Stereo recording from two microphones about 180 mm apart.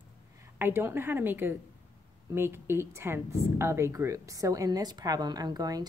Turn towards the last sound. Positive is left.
turn(degrees=-20)  # may be behind; listen again after turning